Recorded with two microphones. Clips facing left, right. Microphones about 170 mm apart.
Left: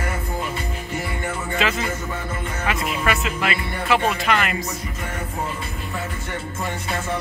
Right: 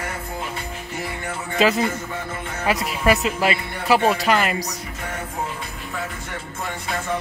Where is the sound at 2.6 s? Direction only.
40° right (ahead or behind).